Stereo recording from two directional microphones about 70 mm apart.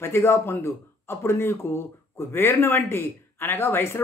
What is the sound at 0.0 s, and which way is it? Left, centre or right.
Speech, left.